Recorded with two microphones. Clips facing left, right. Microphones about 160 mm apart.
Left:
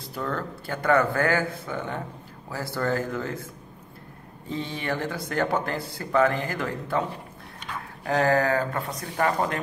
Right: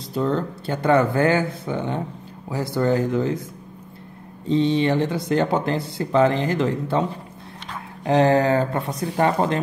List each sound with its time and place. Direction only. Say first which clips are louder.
0.1 s speech: right 8 dB; 20° right (ahead or behind)
4.5 s speech: right 11 dB; 20° right (ahead or behind)